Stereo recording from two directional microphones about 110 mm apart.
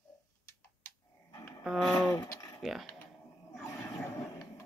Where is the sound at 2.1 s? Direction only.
30° left (ahead or behind).